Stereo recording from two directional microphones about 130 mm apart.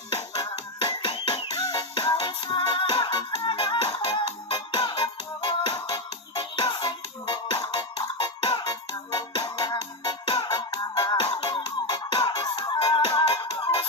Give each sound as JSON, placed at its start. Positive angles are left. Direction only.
{"t": 0.4, "sound": "music", "side_deg": 35}